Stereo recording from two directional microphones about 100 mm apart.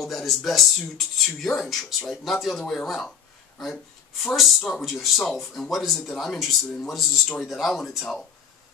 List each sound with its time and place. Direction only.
0.0 s speech: centre (ahead or behind)